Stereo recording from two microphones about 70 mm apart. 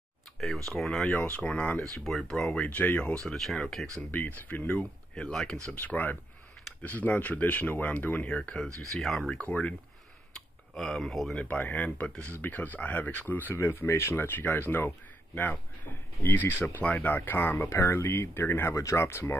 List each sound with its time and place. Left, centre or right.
0.4 s speech: centre
1.0 s speech: left
1.8 s speech: centre
2.6 s speech: left
3.3 s speech: centre
4.1 s speech: left
5.1 s speech: centre
5.8 s speech: left
8.6 s speech: right
8.9 s speech: centre
9.3 s speech: centre
10.7 s speech: centre
11.3 s speech: left
13.6 s speech: left